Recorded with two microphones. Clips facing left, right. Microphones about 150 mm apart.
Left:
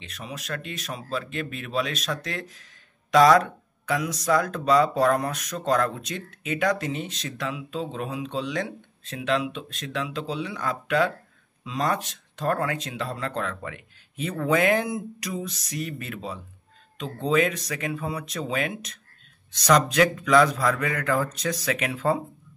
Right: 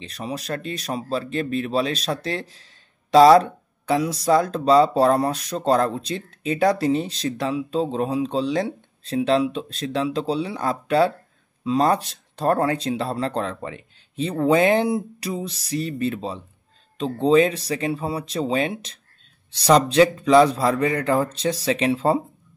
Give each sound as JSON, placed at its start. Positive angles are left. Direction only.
{"t": 0.0, "sound": "speech", "side_deg": -35}